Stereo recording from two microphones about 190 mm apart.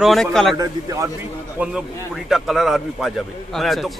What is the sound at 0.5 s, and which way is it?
Speech, 20° right (ahead or behind).